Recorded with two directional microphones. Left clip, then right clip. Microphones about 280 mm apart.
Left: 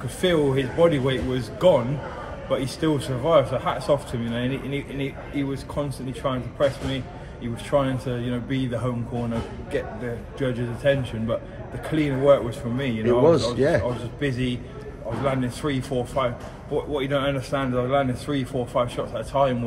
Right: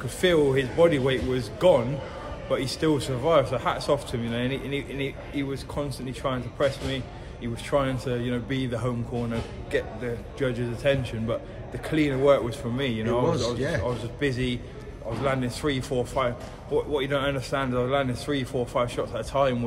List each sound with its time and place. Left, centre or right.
0.2 s a man's voice: centre
10.4 s a man's voice: centre
12.7 s a man's voice: right
13.0 s a man's voice: centre